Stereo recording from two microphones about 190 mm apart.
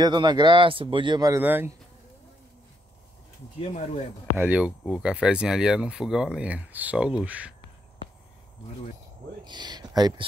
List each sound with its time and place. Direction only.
0.0 s speech: 20° right (ahead or behind)
4.4 s speech: 5° right (ahead or behind)
9.4 s speech: 20° right (ahead or behind)